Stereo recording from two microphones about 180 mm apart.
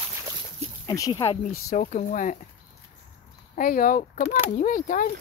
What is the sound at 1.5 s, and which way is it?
Speech, 50° left (ahead or behind).